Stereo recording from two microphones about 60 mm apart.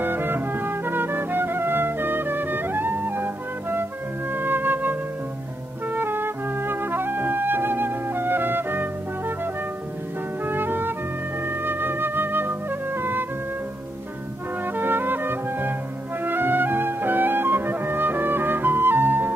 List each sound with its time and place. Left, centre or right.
0.0 s music: right
4.3 s flute: right
5.9 s music: right
10.4 s music: right
11.4 s flute: right
14.8 s music: right